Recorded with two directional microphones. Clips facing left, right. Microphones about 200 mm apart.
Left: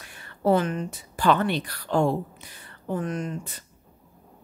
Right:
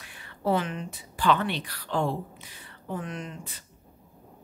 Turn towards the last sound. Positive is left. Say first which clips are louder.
# left 7 dB
turn(degrees=45)  # may be behind; listen again after turning